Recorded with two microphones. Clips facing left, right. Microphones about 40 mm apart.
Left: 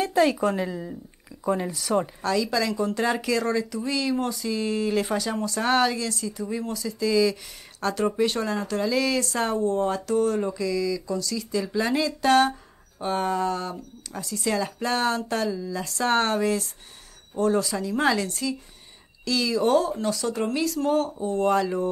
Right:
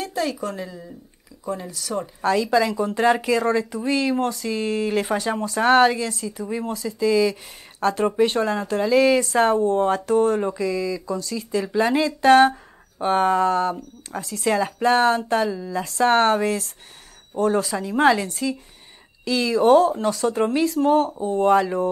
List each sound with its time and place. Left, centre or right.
0.0 s a woman's voice: centre
2.2 s speech: right
13.0 s speech: right